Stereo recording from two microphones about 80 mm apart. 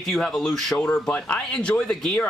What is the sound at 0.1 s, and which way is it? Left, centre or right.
Speech, centre.